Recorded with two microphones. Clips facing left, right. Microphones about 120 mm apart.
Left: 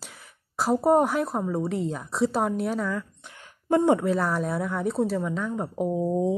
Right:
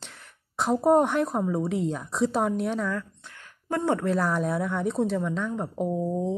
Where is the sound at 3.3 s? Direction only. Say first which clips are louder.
Left 7 dB; 20° left (ahead or behind).